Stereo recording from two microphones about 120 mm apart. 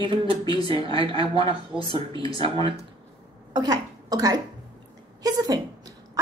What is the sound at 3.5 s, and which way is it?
A woman's voice, 35° right (ahead or behind).